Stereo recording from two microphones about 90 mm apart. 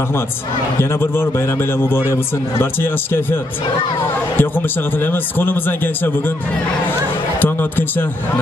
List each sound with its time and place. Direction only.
0.7 s a man's voice: 25° left (ahead or behind)
4.4 s a man's voice: 20° left (ahead or behind)